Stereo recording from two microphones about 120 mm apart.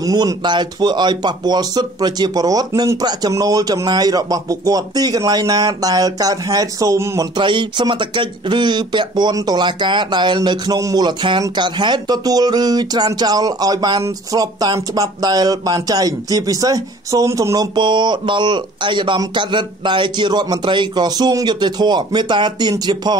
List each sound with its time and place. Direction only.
0.0 s speech: 30° right (ahead or behind)
7.3 s speech: 40° right (ahead or behind)